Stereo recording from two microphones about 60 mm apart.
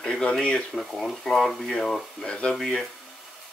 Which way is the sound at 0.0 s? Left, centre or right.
Centre.